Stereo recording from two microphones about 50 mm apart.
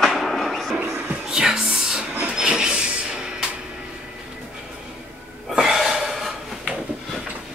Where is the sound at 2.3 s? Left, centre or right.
Centre.